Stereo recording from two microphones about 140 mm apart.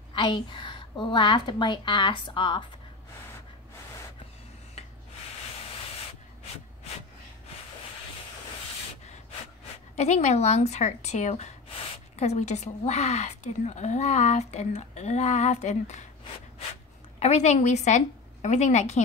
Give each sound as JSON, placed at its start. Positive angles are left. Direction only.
{"t": 0.1, "sound": "a woman's voice", "side_deg": 35}
{"t": 9.9, "sound": "speech", "side_deg": 55}
{"t": 17.2, "sound": "a woman's voice", "side_deg": 55}